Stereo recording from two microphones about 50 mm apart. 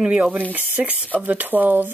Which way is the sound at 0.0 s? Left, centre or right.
Right.